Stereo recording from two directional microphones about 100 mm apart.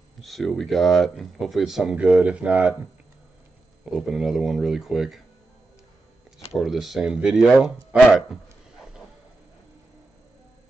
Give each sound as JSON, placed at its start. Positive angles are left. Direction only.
{"t": 0.2, "sound": "speech", "side_deg": 0}
{"t": 3.8, "sound": "speech", "side_deg": -5}
{"t": 6.5, "sound": "speech", "side_deg": 0}
{"t": 7.9, "sound": "a sound", "side_deg": -5}